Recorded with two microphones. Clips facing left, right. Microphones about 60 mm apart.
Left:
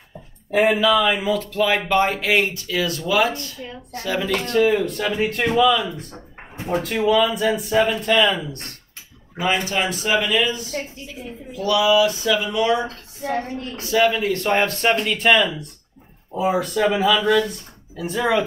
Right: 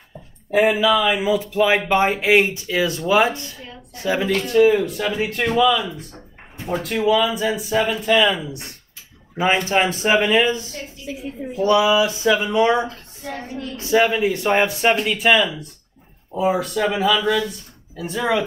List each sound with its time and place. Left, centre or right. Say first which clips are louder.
0.5 s speech: right 1 dB; centre
4.5 s speech: right 3 dB; centre
6.5 s a sound: left 1 dB; left
6.8 s speech: even; centre
9.7 s speech: right 4 dB; right; by 18.4 s centre